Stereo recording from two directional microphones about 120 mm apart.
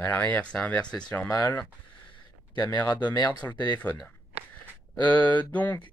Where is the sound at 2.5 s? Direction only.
40° left (ahead or behind).